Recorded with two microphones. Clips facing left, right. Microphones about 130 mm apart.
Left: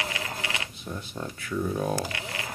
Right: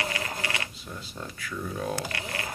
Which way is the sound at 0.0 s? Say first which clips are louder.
Right 1 dB; 10° left (ahead or behind).